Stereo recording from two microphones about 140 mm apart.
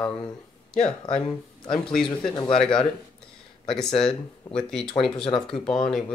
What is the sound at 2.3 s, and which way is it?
Speech, 30° left (ahead or behind).